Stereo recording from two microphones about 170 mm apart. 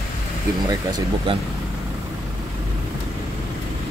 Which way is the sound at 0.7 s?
25° right (ahead or behind).